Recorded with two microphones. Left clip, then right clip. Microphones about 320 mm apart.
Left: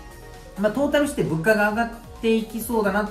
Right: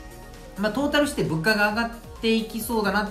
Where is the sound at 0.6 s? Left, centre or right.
Centre.